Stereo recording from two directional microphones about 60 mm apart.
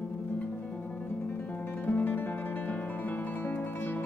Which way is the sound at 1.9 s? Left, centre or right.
Left.